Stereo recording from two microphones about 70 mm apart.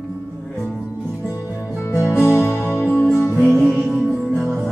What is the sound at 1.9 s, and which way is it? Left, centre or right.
Music, left.